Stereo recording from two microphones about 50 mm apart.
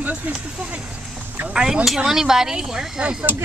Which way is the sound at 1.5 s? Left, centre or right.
Centre.